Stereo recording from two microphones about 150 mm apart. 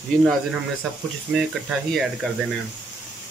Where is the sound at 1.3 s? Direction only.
Centre (ahead or behind).